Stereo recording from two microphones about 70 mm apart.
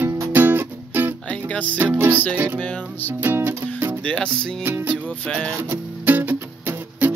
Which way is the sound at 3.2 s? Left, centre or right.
Right.